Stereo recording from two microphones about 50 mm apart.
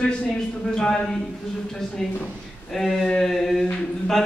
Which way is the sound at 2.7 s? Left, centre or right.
Centre.